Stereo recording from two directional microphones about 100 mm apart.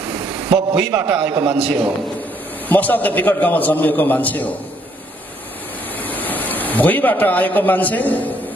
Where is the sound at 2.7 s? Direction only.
15° left (ahead or behind).